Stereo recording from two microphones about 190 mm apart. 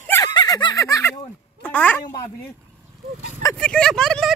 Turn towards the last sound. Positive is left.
turn(degrees=0)  # may be behind; listen again after turning